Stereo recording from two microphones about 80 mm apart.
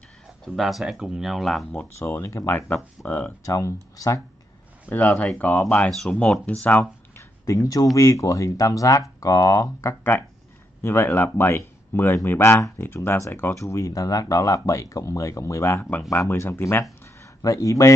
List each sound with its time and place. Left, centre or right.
0.5 s speech: centre
2.0 s speech: left
3.1 s speech: centre
3.4 s speech: left
4.8 s speech: left
7.4 s speech: left
10.8 s speech: left
15.7 s speech: left
16.0 s speech: left
17.4 s speech: left